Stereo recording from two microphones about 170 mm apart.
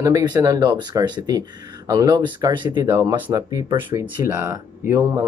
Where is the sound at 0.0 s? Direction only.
20° right (ahead or behind).